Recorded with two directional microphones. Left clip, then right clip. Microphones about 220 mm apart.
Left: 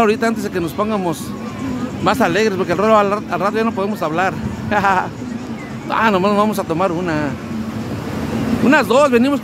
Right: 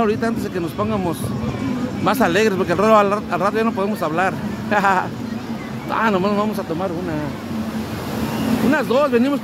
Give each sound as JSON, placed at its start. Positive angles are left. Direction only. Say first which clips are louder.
{"t": 0.0, "sound": "speech", "louder": "left 4 dB", "side_deg": 15}
{"t": 8.6, "sound": "speech", "louder": "left 6 dB", "side_deg": 20}